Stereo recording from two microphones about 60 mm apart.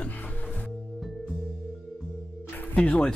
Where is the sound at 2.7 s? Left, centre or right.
Left.